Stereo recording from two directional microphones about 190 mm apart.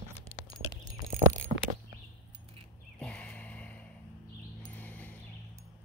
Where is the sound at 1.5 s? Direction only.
35° right (ahead or behind).